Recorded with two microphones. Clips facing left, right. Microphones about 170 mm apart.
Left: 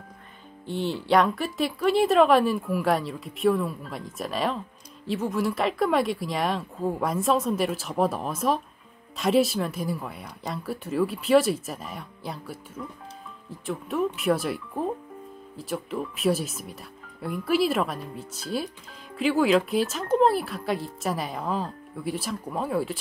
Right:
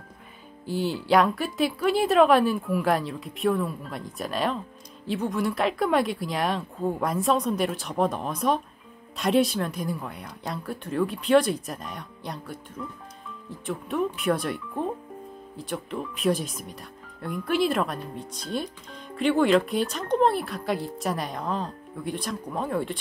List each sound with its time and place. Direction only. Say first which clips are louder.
0.7 s speech: right 1 dB; centre (ahead or behind)